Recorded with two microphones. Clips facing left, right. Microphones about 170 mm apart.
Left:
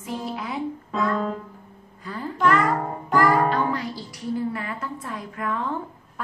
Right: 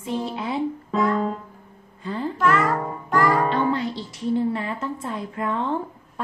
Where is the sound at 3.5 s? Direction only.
25° right (ahead or behind).